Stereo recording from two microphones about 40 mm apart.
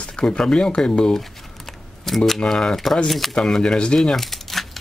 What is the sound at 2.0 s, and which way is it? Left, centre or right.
Speech, centre.